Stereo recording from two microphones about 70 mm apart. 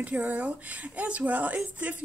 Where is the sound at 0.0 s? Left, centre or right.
Right.